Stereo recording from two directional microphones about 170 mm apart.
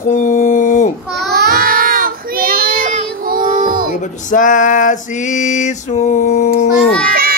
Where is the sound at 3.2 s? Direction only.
55° right (ahead or behind).